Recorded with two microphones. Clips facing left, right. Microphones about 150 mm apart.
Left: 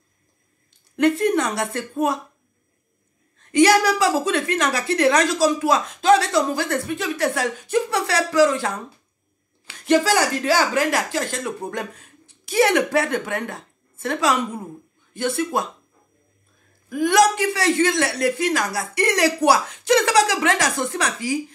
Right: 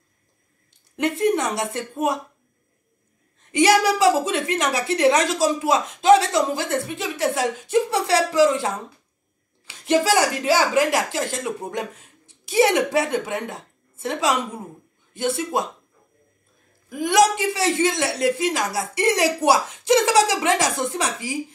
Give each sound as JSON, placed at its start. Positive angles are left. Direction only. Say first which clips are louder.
{"t": 0.9, "sound": "a woman's voice", "louder": "left 2 dB", "side_deg": -20}
{"t": 3.5, "sound": "a woman's voice", "louder": "left 1 dB", "side_deg": -25}
{"t": 16.9, "sound": "a woman's voice", "louder": "left 1 dB", "side_deg": -20}